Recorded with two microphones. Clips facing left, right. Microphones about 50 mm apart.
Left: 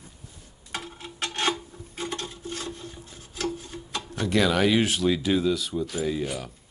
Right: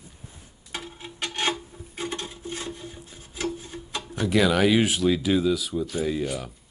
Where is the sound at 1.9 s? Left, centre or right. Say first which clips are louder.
Right 1 dB; right; by 6.5 s centre.